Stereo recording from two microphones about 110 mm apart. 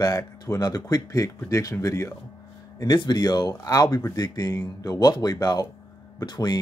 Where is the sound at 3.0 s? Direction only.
40° left (ahead or behind).